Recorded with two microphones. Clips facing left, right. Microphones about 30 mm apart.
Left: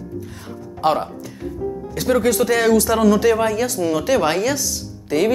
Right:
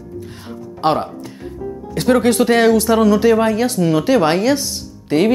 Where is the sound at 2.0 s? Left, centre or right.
Right.